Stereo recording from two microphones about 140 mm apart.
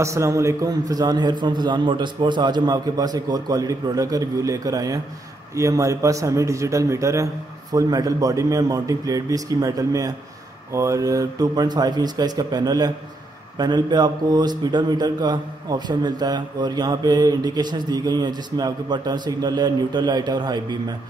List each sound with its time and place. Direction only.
0.0 s a man's voice: 20° right (ahead or behind)